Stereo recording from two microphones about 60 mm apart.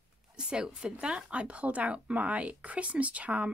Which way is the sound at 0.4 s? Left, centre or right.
Centre.